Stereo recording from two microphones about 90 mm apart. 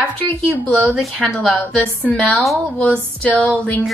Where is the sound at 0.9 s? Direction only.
15° left (ahead or behind).